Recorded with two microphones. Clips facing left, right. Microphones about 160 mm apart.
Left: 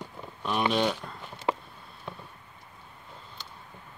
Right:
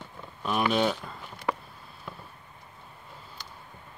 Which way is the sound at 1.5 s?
20° left (ahead or behind).